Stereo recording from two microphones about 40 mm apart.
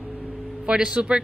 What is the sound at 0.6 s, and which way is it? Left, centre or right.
Speech, right.